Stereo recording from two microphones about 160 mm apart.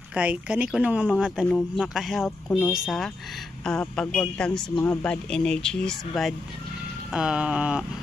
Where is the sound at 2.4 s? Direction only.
10° left (ahead or behind).